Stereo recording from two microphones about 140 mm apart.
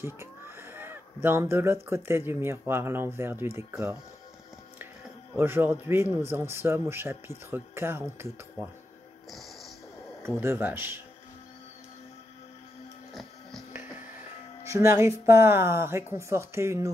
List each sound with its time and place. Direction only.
0.0 s speech: 15° right (ahead or behind)
5.3 s speech: 15° right (ahead or behind)
10.2 s speech: 20° right (ahead or behind)
13.1 s printer: centre (ahead or behind)
14.6 s speech: 20° right (ahead or behind)